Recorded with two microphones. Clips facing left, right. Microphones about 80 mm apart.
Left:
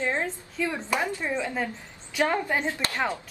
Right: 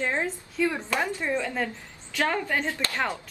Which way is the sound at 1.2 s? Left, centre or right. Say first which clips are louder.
Right 1 dB; centre.